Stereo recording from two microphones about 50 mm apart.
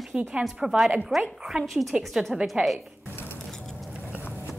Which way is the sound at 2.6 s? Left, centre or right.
Right.